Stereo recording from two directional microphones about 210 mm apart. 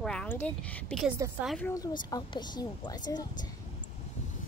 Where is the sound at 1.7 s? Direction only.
15° left (ahead or behind).